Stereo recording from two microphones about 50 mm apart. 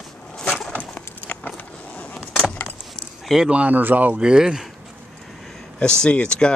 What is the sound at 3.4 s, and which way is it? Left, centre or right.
Speech, right.